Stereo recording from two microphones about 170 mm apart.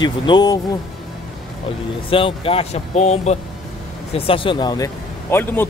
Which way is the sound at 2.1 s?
30° left (ahead or behind).